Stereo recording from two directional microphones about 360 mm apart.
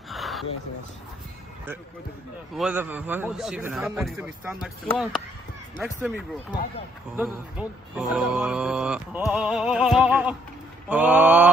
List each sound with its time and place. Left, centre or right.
0.1 s a sound: centre
2.5 s speech: centre
7.2 s speech: centre